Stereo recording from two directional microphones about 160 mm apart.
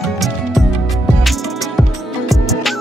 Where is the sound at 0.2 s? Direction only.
Centre (ahead or behind).